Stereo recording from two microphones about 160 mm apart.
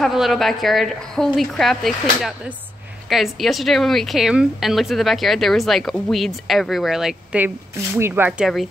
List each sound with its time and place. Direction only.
0.0 s speech: centre (ahead or behind)